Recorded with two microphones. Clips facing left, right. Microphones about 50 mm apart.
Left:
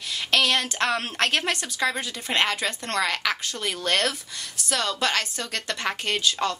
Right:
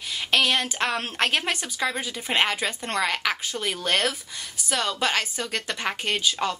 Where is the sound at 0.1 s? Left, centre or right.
Centre.